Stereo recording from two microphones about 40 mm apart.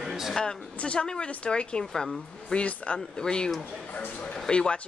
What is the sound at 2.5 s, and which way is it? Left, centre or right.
Speech, left.